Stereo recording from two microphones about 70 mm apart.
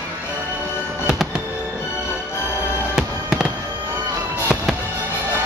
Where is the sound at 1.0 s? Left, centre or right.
Centre.